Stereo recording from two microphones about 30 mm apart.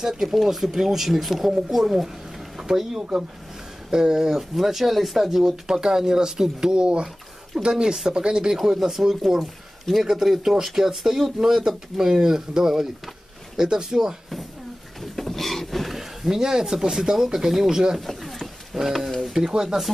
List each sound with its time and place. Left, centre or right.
0.0 s speech: centre
3.9 s speech: right
5.7 s speech: right
6.7 s speech: right; by 8.1 s centre
8.1 s speech: right
8.7 s speech: centre
15.0 s a sound: centre
16.0 s speech: centre
18.0 s a sound: centre
18.8 s speech: centre
19.4 s speech: centre